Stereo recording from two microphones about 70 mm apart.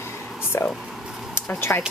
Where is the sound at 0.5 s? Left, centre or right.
Left.